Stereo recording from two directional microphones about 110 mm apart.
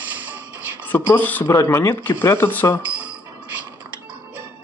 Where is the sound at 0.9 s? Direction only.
20° left (ahead or behind).